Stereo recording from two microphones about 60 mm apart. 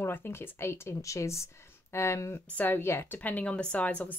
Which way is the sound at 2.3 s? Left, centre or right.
Left.